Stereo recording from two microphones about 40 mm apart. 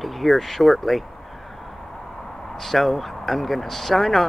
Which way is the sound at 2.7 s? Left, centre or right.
Centre.